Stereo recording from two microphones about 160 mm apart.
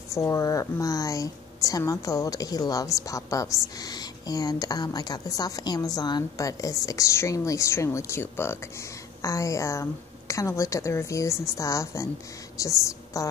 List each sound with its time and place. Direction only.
0.1 s a woman's voice: 20° left (ahead or behind)